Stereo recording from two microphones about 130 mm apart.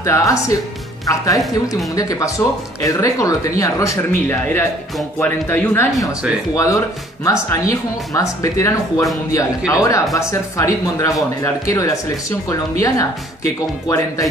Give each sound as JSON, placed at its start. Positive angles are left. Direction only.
{"t": 0.0, "sound": "speech", "side_deg": 25}
{"t": 8.1, "sound": "speech", "side_deg": 25}
{"t": 13.8, "sound": "speech", "side_deg": 25}